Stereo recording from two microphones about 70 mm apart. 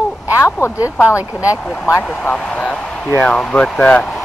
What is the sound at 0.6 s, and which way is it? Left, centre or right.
Speech, left.